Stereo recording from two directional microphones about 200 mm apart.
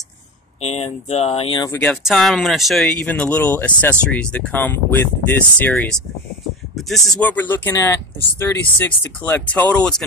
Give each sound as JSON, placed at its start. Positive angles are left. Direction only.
{"t": 0.6, "sound": "speech", "side_deg": 30}
{"t": 1.7, "sound": "speech", "side_deg": 5}